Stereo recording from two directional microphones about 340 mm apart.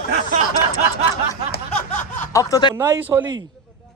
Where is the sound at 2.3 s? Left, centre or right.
Centre.